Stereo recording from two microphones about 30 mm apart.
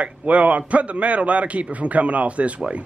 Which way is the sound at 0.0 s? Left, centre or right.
Right.